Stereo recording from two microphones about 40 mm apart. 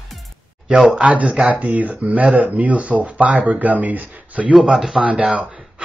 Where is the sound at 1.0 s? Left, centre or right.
Right.